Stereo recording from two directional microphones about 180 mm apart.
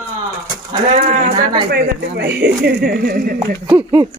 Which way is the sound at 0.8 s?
45° right (ahead or behind).